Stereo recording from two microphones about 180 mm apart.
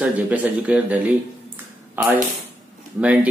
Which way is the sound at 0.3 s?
10° right (ahead or behind).